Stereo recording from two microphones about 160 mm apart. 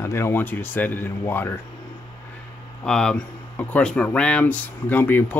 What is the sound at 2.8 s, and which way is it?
Speech, 5° left (ahead or behind).